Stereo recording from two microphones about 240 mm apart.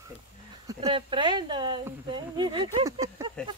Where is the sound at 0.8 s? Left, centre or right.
Right.